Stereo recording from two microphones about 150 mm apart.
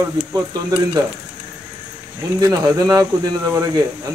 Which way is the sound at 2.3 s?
25° right (ahead or behind).